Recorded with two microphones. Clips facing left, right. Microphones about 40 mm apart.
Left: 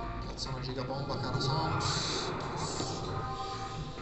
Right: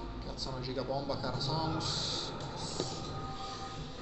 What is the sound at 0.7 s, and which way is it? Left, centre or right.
A man's voice, centre.